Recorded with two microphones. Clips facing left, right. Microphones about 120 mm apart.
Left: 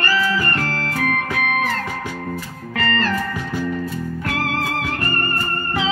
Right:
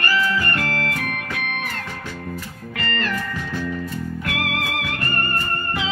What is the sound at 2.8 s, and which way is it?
Music, 35° left (ahead or behind).